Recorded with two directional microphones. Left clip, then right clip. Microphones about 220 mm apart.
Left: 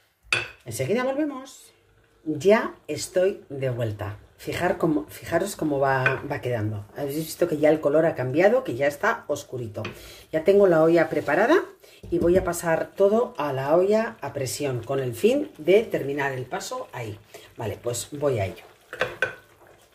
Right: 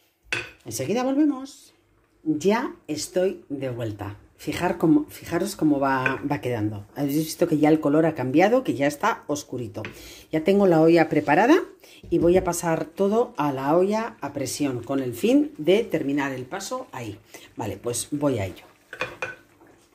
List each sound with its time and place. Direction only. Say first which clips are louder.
0.7 s speech: even; 30° right (ahead or behind)
6.2 s speech: right 2 dB; 40° right (ahead or behind)